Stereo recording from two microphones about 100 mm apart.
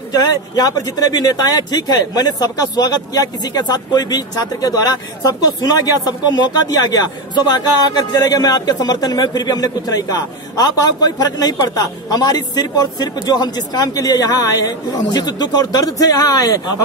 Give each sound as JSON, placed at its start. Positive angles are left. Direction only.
{"t": 0.1, "sound": "speech", "side_deg": 40}